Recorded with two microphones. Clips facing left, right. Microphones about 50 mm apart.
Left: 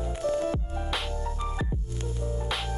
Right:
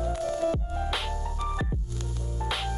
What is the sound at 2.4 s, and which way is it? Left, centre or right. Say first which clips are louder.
Music: right 4 dB; centre.